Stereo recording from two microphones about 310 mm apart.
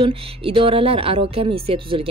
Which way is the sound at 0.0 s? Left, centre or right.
Centre.